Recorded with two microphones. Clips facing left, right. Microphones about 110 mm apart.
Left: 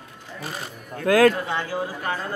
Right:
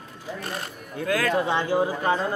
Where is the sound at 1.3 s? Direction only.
20° right (ahead or behind).